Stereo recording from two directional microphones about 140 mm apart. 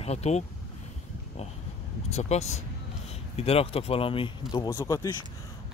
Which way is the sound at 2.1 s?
50° left (ahead or behind).